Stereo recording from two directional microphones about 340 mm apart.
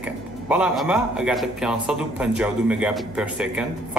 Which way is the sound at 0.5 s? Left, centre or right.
Centre.